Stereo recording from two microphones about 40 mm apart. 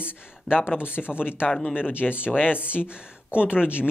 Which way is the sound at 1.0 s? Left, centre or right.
Centre.